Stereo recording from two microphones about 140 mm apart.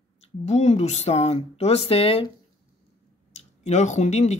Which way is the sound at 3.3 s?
55° left (ahead or behind).